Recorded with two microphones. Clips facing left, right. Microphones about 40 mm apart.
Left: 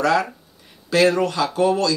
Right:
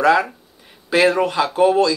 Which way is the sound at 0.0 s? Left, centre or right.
Centre.